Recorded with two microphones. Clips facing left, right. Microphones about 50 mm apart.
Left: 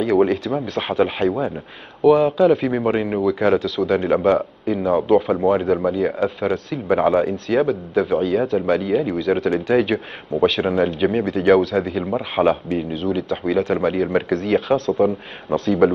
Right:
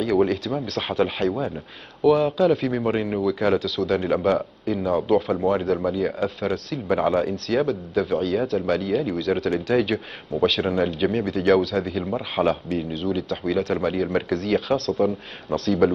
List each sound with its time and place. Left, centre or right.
0.0 s speech: centre